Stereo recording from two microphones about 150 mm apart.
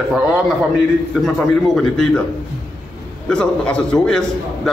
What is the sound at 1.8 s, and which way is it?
Speech, 5° left (ahead or behind).